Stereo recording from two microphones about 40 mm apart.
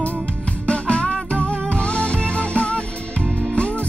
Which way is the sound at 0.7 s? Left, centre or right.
Left.